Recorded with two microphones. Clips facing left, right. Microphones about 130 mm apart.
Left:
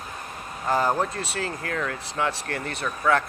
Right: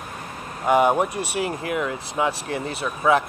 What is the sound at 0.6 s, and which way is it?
Speech, 15° right (ahead or behind).